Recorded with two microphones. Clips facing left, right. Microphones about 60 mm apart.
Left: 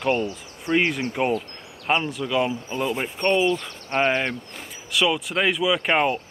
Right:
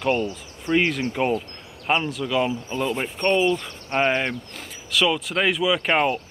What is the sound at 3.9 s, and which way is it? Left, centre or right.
Speech, right.